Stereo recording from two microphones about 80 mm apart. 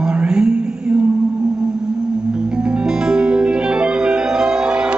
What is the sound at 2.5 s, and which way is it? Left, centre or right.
Music, centre.